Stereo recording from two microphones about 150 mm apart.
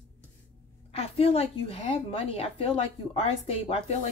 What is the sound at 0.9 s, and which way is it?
A woman's voice, 40° left (ahead or behind).